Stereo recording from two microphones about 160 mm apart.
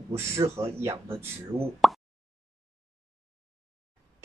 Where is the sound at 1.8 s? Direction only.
Centre (ahead or behind).